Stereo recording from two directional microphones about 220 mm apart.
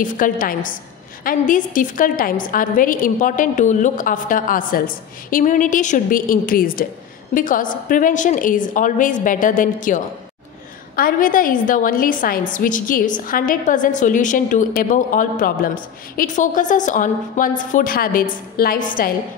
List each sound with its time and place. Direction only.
0.0 s a woman's voice: 40° left (ahead or behind)